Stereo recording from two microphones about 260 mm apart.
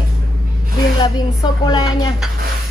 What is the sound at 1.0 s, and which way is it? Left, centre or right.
A woman's voice, centre.